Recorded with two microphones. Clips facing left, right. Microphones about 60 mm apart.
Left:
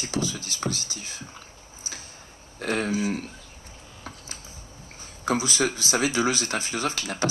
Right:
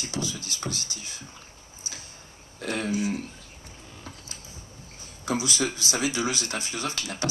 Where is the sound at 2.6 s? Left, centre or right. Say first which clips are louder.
Left 2 dB; left.